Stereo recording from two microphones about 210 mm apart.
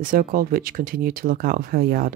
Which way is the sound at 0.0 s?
40° right (ahead or behind).